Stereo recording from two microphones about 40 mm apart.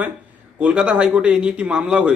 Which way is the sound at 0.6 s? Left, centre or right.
Right.